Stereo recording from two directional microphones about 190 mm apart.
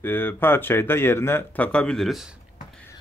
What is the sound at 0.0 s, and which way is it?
Speech, 10° left (ahead or behind).